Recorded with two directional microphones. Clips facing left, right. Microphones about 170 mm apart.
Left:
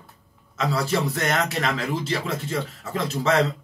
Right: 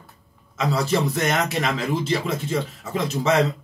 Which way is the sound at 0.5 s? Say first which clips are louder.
Right 2 dB; 20° right (ahead or behind).